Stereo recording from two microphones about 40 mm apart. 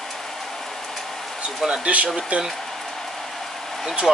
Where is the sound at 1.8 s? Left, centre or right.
Right.